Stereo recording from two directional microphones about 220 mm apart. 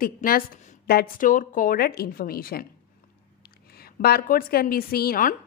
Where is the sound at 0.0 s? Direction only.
40° left (ahead or behind).